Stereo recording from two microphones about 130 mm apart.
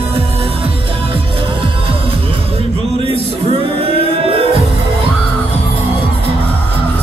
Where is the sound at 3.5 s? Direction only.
45° right (ahead or behind).